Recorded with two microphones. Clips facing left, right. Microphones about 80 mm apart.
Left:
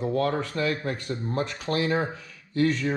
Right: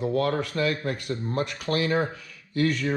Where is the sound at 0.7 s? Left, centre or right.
Left.